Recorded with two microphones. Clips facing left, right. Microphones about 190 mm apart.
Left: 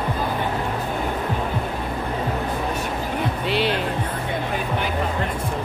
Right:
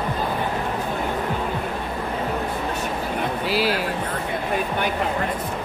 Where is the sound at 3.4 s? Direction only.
5° right (ahead or behind).